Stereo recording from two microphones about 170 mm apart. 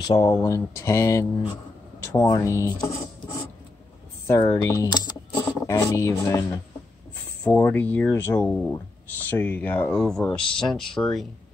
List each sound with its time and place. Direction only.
0.1 s speech: 20° left (ahead or behind)
4.4 s speech: 25° left (ahead or behind); by 11.2 s 5° left (ahead or behind)